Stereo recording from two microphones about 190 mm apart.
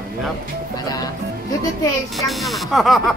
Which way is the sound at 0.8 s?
20° left (ahead or behind).